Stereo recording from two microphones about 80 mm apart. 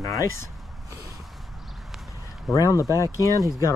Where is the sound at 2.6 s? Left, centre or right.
Left.